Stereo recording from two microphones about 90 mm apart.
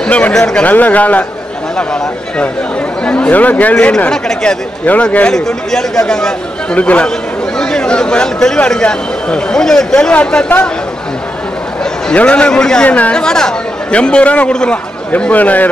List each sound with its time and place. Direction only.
0.0 s speech: 10° left (ahead or behind)
3.1 s speech: 15° left (ahead or behind)
11.8 s speech: 10° left (ahead or behind)